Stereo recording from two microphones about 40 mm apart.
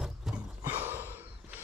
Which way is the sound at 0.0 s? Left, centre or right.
Centre.